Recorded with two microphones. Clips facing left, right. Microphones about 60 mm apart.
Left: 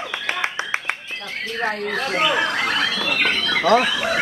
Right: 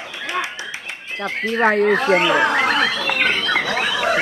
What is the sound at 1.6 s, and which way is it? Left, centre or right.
Speech, right.